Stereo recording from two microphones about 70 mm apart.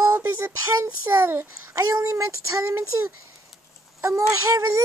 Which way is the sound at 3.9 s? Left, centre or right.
Right.